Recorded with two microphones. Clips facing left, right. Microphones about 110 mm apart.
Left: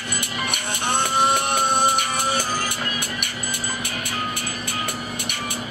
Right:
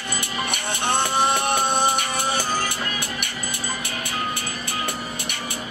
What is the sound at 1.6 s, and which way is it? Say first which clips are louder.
Music: left 1 dB; 30° right (ahead or behind).